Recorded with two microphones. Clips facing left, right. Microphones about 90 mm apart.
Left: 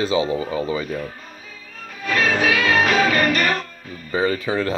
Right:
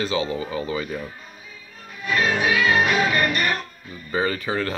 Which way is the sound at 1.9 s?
80° left.